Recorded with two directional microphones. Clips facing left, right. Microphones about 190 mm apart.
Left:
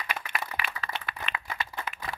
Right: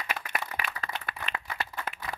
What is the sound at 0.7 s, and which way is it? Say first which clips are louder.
Clapping: left 1 dB; 45° right (ahead or behind).